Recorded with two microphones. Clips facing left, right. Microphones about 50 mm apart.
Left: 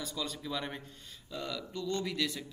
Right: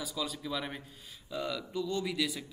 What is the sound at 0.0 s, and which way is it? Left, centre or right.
Speech, centre.